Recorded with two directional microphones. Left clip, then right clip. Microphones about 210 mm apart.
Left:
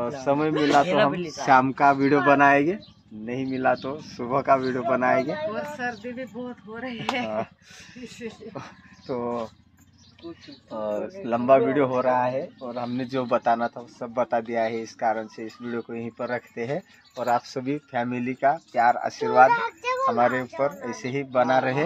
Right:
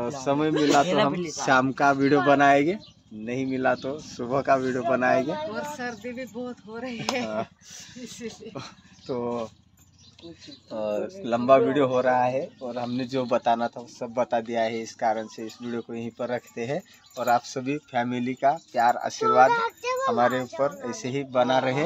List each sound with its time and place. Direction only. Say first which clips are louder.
0.2 s speech: left 1 dB; 10° right (ahead or behind)
1.1 s speech: even; 20° right (ahead or behind)
1.4 s a man's voice: left 3 dB; 5° right (ahead or behind); by 7.2 s 30° right (ahead or behind)
8.5 s speech: left 1 dB; 5° right (ahead or behind)
10.7 s a man's voice: even; 10° right (ahead or behind)